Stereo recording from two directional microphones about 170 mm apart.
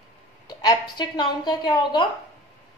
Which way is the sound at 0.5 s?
25° left (ahead or behind).